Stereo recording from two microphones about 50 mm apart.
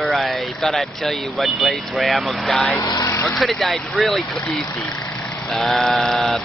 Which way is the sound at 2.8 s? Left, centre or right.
Left.